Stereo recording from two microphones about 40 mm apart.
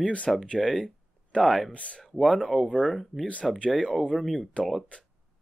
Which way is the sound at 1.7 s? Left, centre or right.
Left.